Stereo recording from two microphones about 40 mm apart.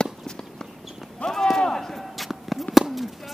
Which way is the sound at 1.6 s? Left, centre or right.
Centre.